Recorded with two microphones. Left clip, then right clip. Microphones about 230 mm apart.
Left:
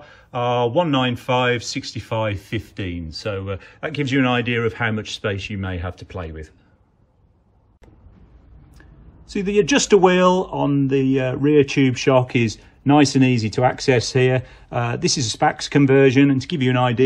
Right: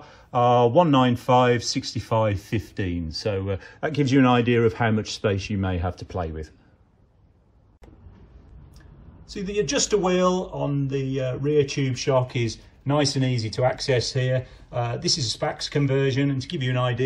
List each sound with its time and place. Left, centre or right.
0.0 s speech: centre
9.3 s speech: left